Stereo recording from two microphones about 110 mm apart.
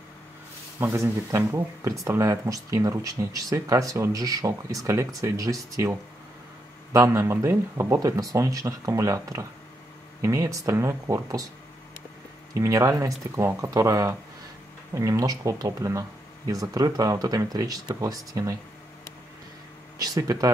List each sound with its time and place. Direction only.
0.7 s speech: 25° right (ahead or behind)
12.5 s speech: 30° right (ahead or behind)
20.0 s speech: 35° right (ahead or behind)